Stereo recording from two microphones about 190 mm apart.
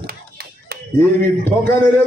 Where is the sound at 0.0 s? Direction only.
55° right (ahead or behind).